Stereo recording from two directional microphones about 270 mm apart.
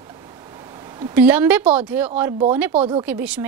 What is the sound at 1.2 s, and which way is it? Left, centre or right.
A woman's voice, centre.